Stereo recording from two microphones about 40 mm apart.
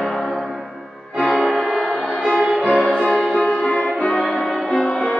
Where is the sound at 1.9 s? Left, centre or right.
Right.